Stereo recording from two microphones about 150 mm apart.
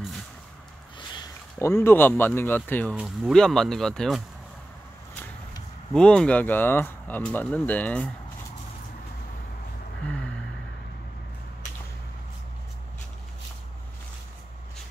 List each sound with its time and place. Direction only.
1.6 s speech: 15° left (ahead or behind)
5.9 s speech: 5° left (ahead or behind)
10.0 s a sound: 5° left (ahead or behind)